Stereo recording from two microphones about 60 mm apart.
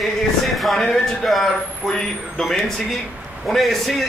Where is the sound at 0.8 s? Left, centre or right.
Centre.